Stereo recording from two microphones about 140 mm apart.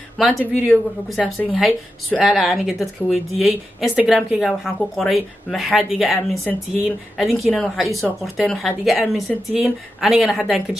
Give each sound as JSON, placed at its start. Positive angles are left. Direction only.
{"t": 0.2, "sound": "speech", "side_deg": 0}